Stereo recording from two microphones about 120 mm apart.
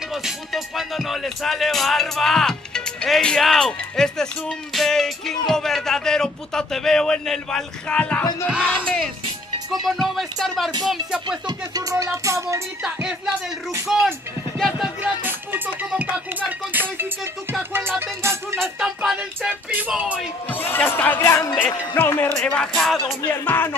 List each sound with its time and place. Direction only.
0.1 s music: centre (ahead or behind)
5.5 s speech: 5° left (ahead or behind)
11.2 s music: 35° right (ahead or behind)
12.8 s music: 5° right (ahead or behind)
13.8 s speech: 5° right (ahead or behind)
15.2 s music: 15° right (ahead or behind)
18.8 s a sound: 10° right (ahead or behind)
19.9 s music: 10° right (ahead or behind)
20.7 s speech: 15° left (ahead or behind)
23.2 s speech: 20° left (ahead or behind)